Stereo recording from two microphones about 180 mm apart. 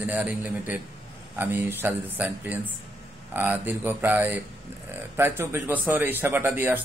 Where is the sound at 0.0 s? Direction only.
10° right (ahead or behind).